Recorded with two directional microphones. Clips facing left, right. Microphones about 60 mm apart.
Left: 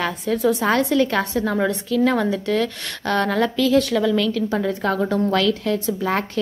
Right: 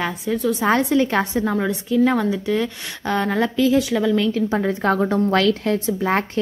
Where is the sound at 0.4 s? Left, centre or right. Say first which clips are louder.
Left 3 dB; centre.